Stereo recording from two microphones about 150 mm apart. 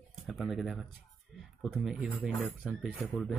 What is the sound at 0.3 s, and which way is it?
Speech, centre (ahead or behind).